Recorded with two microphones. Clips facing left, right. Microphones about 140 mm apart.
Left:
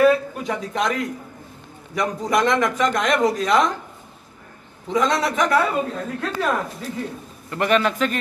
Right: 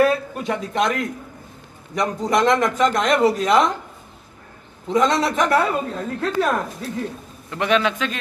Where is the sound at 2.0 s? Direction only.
5° left (ahead or behind).